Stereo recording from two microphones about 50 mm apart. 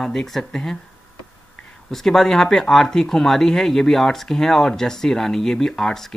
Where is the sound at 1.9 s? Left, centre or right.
Centre.